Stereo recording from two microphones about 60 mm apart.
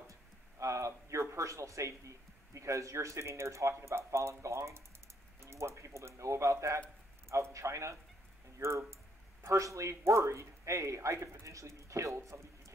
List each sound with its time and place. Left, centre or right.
0.1 s speech: right